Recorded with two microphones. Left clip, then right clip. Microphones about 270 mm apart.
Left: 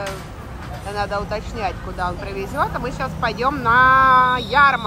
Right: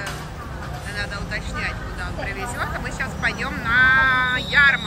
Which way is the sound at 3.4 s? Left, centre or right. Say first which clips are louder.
Left 4 dB; centre.